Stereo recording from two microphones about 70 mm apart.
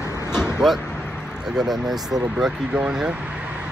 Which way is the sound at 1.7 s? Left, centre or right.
Right.